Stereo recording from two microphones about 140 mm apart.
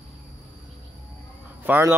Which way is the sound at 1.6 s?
15° right (ahead or behind).